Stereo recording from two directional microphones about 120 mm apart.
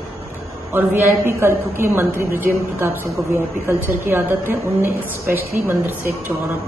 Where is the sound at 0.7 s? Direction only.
15° right (ahead or behind).